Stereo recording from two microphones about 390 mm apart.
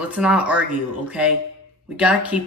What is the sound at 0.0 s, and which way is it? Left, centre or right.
Speech, centre.